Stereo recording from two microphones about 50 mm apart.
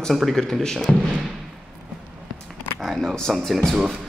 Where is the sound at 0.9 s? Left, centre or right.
Left.